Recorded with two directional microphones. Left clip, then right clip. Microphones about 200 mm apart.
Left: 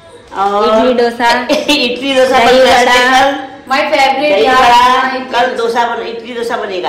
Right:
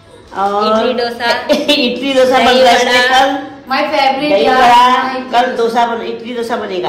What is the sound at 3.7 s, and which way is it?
Speech, 10° right (ahead or behind).